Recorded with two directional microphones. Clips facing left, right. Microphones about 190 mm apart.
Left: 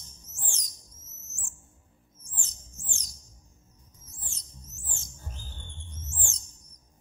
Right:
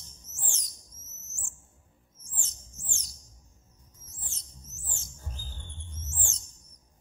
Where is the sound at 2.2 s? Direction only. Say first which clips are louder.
Left 1 dB; 15° left (ahead or behind).